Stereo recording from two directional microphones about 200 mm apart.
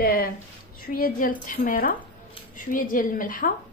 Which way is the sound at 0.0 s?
50° left (ahead or behind).